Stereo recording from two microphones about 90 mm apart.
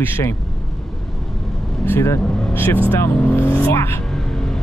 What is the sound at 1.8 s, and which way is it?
Speech, 30° left (ahead or behind).